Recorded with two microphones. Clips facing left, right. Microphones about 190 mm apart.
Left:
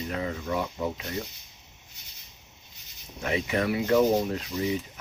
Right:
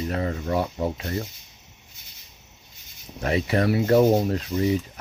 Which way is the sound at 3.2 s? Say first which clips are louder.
Right 4 dB; 35° right (ahead or behind).